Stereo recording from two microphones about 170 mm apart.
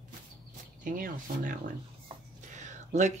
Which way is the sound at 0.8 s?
55° right (ahead or behind).